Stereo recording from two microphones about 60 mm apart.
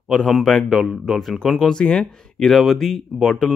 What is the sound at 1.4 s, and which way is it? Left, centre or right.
Speech, centre.